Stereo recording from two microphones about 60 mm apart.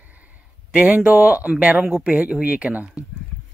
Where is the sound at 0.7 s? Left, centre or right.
Right.